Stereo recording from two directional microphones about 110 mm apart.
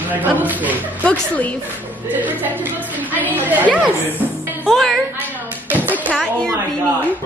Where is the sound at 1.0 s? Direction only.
15° left (ahead or behind).